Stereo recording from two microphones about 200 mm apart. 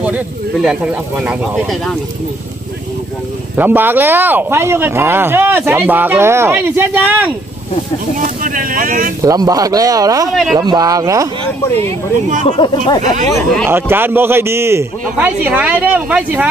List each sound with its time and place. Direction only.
1.2 s speech: 5° right (ahead or behind)
3.5 s speech: 10° right (ahead or behind)
8.4 s speech: 45° right (ahead or behind)
9.2 s speech: 15° right (ahead or behind)
11.7 s speech: 30° right (ahead or behind)
12.4 s speech: 25° left (ahead or behind)
13.0 s speech: 40° right (ahead or behind)
13.3 s speech: 5° left (ahead or behind)
13.7 s speech: 10° right (ahead or behind)